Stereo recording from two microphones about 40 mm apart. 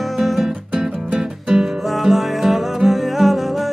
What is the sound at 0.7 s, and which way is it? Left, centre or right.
Music, centre.